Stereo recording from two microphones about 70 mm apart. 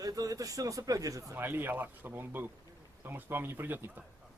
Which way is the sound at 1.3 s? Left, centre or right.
Right.